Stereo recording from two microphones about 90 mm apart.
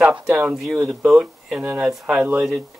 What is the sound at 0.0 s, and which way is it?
Speech, 5° right (ahead or behind).